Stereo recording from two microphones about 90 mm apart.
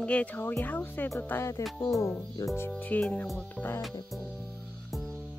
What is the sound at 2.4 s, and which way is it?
Speech, 40° left (ahead or behind).